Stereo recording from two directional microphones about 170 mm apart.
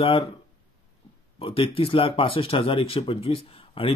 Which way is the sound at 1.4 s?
30° left (ahead or behind).